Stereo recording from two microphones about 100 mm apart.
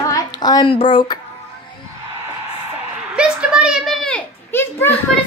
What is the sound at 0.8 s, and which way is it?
Speech, 55° left (ahead or behind).